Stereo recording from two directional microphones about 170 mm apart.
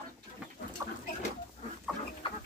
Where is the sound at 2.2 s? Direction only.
30° left (ahead or behind).